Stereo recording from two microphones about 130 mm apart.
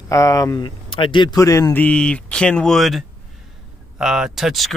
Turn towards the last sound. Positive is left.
turn(degrees=0)  # may be behind; listen again after turning